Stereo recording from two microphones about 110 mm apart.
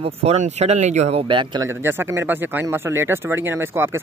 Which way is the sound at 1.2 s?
50° right (ahead or behind).